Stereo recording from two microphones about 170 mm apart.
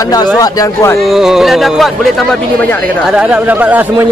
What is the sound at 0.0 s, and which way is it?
Speech, 20° left (ahead or behind).